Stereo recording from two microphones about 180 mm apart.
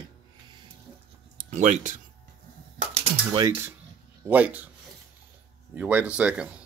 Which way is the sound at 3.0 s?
30° right (ahead or behind).